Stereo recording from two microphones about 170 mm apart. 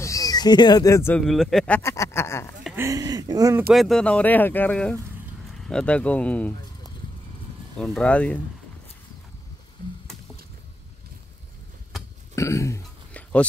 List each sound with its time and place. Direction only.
0.0 s speech: 20° left (ahead or behind)
1.2 s speech: centre (ahead or behind)
1.8 s a sound: 15° left (ahead or behind)
2.7 s speech: 15° right (ahead or behind)
3.7 s speech: centre (ahead or behind)
7.7 s speech: 5° left (ahead or behind)
12.4 s a sound: 15° left (ahead or behind)